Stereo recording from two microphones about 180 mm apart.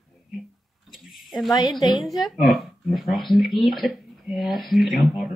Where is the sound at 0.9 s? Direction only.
Centre (ahead or behind).